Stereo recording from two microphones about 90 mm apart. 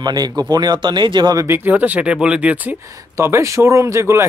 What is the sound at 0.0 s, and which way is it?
Speech, 50° right (ahead or behind).